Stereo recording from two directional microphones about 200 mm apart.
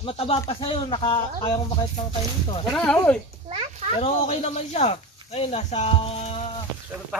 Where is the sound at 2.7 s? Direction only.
5° left (ahead or behind).